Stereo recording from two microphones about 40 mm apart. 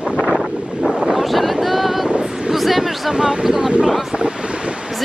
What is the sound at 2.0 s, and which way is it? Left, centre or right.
Wind noise, right.